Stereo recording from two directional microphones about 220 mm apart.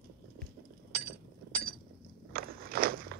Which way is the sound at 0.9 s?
45° right (ahead or behind).